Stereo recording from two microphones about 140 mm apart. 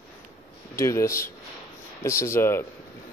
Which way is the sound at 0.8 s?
20° left (ahead or behind).